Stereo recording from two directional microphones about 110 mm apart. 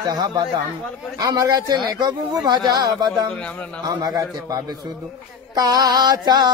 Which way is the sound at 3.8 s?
35° right (ahead or behind).